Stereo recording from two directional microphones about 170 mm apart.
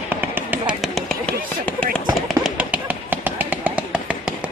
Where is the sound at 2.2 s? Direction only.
5° right (ahead or behind).